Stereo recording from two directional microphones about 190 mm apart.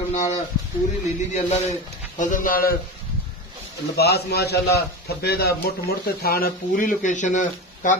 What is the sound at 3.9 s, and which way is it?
A man's voice, 60° left (ahead or behind).